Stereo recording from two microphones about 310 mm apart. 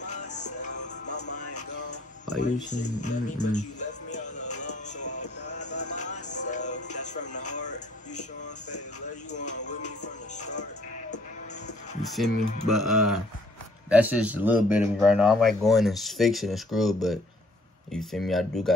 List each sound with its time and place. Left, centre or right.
0.1 s music: left
0.7 s music: left
2.3 s speech: left
3.0 s speech: left
5.1 s music: left
5.6 s music: left
5.9 s music: left
7.3 s music: left
9.3 s music: left
12.2 s speech: centre